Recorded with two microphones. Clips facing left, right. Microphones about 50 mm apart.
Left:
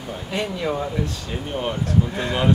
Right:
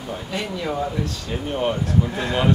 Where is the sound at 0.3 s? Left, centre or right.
Centre.